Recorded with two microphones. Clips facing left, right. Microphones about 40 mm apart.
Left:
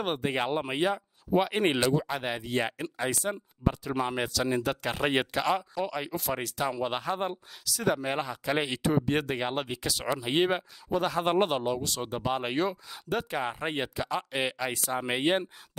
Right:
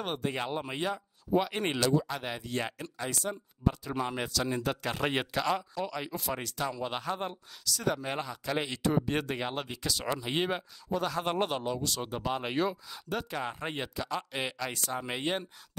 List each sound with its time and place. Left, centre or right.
0.0 s speech: left
3.8 s speech: centre; by 15.4 s left